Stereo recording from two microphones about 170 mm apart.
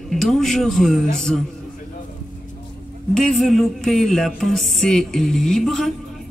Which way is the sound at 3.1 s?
5° left (ahead or behind).